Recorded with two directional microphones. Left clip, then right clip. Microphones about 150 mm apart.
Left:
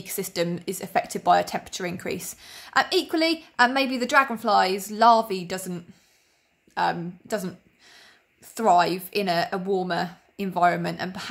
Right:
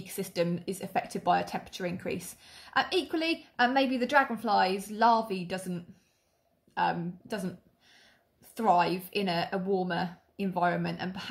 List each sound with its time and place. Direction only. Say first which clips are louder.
0.0 s a woman's voice: left 4 dB; 30° left (ahead or behind)
6.7 s a sound: left 4 dB; 30° left (ahead or behind)
8.5 s a woman's voice: left 6 dB; 30° left (ahead or behind)